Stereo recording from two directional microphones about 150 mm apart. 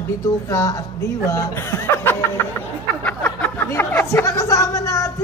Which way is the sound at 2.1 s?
15° left (ahead or behind).